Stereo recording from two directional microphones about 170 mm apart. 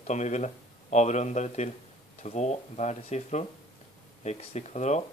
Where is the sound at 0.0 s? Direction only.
45° left (ahead or behind).